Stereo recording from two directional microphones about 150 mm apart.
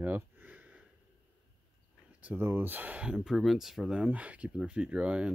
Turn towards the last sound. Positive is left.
turn(degrees=-5)  # may be behind; listen again after turning